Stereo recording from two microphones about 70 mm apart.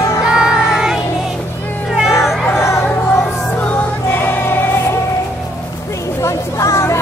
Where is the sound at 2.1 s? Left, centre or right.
Centre.